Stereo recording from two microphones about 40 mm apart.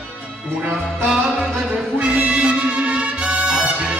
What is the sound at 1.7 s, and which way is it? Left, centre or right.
Music, right.